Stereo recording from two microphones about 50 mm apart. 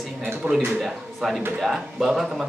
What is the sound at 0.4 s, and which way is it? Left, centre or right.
Speech, right.